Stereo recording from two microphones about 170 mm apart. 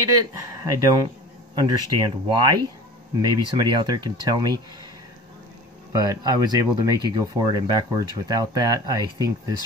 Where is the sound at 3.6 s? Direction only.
25° right (ahead or behind).